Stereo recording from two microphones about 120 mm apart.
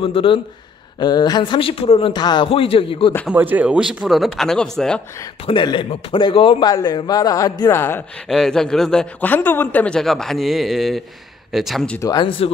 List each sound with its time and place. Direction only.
0.0 s speech: 50° left (ahead or behind)
0.9 s speech: 35° left (ahead or behind)
3.3 s speech: 15° right (ahead or behind); by 5.0 s 5° left (ahead or behind)
5.5 s speech: 45° left (ahead or behind)
6.7 s speech: 35° left (ahead or behind)
7.7 s speech: 20° left (ahead or behind)
8.3 s speech: 5° left (ahead or behind)
9.2 s speech: 15° left (ahead or behind)
9.9 s speech: 5° left (ahead or behind)
12.2 s speech: 50° left (ahead or behind)